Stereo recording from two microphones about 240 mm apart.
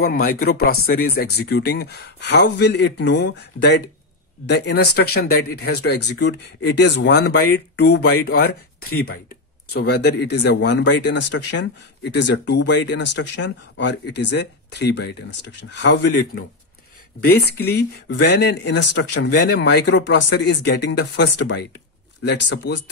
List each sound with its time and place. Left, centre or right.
0.0 s speech: left
9.8 s speech: left
17.6 s speech: left